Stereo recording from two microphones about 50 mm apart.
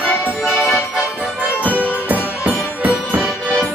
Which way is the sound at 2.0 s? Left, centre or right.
Right.